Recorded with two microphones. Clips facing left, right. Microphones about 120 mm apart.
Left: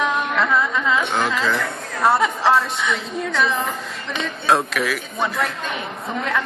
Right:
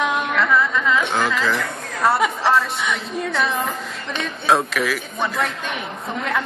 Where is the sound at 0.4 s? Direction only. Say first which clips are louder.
Right 2 dB; 15° left (ahead or behind).